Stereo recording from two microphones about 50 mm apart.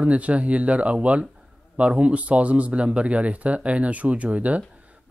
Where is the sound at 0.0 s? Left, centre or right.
Right.